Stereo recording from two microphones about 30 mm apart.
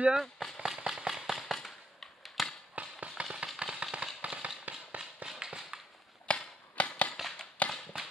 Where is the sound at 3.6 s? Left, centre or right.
Right.